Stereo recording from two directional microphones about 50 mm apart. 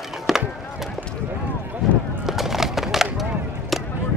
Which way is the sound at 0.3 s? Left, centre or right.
Centre.